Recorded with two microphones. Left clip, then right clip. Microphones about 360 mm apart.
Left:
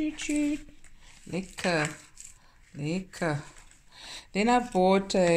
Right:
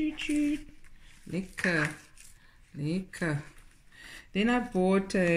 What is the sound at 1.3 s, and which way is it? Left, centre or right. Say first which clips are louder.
Speech: left 1 dB; centre.